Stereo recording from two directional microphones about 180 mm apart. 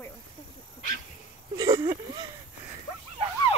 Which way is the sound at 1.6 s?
20° right (ahead or behind).